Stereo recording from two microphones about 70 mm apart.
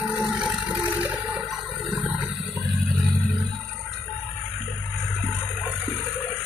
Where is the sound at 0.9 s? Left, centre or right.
Right.